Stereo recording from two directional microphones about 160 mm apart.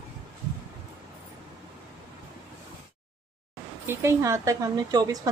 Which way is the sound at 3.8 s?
15° right (ahead or behind).